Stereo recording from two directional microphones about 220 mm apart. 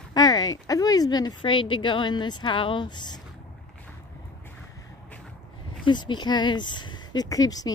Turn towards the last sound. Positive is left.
turn(degrees=15)  # may be behind; listen again after turning